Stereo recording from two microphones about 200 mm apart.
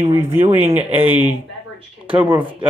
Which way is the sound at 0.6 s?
30° right (ahead or behind).